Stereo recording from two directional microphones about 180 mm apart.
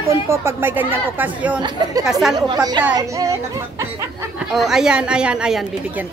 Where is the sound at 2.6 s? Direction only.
20° right (ahead or behind).